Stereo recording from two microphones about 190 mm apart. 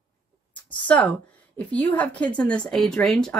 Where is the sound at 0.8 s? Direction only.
5° left (ahead or behind).